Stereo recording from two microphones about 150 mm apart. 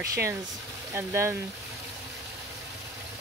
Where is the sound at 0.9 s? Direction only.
15° right (ahead or behind).